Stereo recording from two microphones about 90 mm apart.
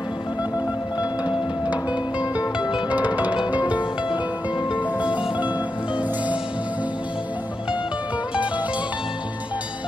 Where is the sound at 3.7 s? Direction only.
65° left (ahead or behind).